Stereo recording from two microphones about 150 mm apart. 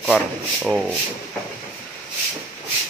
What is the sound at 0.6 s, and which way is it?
Speech, 5° right (ahead or behind).